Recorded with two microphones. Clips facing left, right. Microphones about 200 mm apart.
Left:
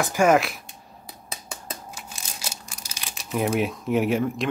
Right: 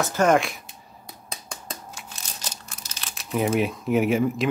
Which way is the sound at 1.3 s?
5° left (ahead or behind).